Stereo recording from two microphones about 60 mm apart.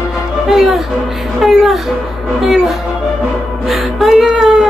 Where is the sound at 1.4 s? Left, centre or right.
Centre.